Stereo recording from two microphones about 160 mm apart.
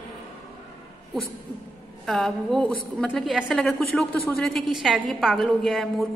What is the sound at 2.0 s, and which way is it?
A woman's voice, centre (ahead or behind).